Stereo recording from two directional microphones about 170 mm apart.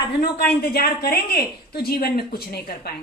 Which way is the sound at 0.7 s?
60° left (ahead or behind).